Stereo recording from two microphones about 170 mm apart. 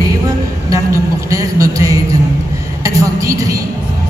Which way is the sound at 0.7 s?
20° right (ahead or behind).